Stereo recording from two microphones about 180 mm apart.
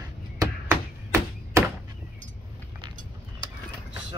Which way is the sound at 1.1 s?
15° right (ahead or behind).